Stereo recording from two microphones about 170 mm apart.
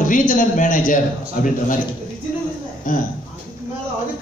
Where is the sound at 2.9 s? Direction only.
50° left (ahead or behind).